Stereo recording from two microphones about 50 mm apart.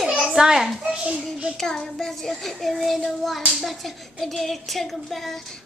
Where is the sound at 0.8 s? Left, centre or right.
Centre.